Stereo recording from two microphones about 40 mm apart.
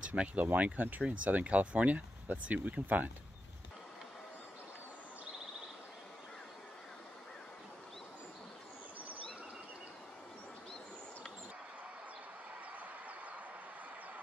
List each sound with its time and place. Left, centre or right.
0.0 s speech: right
0.6 s speech: right
1.2 s speech: right